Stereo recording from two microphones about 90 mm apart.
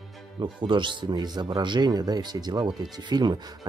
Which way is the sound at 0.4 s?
65° right (ahead or behind).